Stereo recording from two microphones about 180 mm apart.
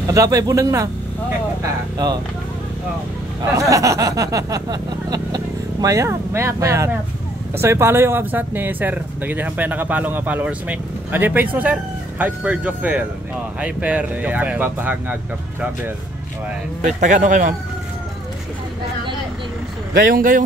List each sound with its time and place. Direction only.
0.0 s speech: 20° right (ahead or behind)
3.5 s a sound: 20° right (ahead or behind)
7.6 s speech: 15° right (ahead or behind)
16.8 s a man's voice: 45° right (ahead or behind)
19.9 s a man's voice: 50° right (ahead or behind)